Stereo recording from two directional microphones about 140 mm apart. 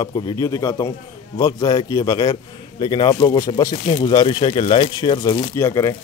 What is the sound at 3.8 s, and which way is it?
A man's voice, 40° left (ahead or behind).